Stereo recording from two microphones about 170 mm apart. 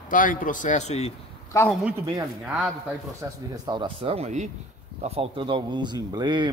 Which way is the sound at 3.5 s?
25° right (ahead or behind).